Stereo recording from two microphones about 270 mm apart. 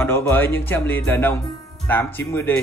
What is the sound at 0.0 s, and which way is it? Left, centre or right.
Speech, centre.